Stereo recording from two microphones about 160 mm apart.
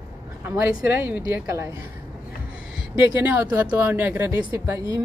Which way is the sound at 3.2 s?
10° right (ahead or behind).